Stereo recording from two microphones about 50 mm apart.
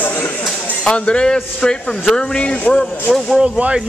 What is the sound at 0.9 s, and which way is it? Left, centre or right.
Speech, centre.